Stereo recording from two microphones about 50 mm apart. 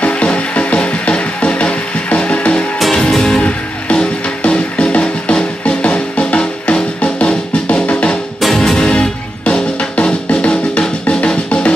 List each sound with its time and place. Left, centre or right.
0.0 s music: left
3.0 s music: centre
3.4 s music: left
8.4 s music: centre; by 11.7 s left